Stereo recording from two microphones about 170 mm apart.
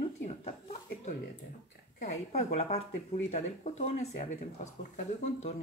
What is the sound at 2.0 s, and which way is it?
Speech, 45° left (ahead or behind).